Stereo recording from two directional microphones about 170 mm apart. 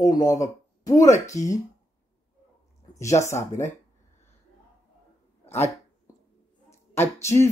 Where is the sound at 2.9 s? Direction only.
15° left (ahead or behind).